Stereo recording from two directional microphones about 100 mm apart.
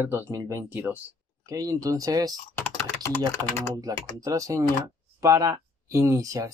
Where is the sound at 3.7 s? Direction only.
35° right (ahead or behind).